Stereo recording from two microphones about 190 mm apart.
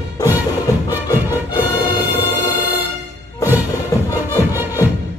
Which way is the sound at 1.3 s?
10° right (ahead or behind).